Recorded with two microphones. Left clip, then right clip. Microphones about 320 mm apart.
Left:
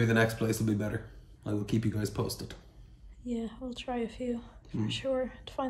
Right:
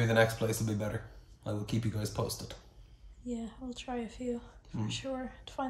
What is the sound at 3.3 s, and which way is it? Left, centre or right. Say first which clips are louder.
A woman's voice: left 4 dB; left.